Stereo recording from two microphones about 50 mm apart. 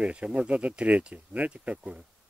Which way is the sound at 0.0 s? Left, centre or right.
Right.